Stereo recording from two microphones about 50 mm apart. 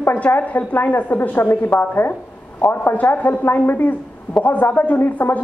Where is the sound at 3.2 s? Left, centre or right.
Left.